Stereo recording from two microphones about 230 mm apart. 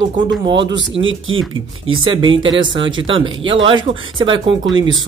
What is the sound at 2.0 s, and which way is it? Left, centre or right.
Speech, right.